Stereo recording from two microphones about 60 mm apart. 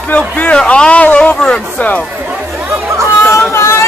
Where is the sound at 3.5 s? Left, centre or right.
Left.